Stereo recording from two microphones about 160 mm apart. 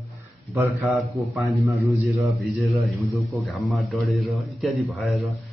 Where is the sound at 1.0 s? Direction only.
20° right (ahead or behind).